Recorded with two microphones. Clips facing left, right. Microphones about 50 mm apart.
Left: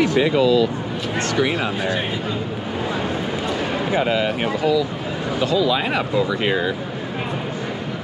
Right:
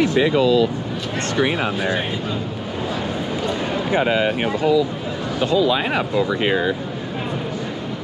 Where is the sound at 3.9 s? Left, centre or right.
Right.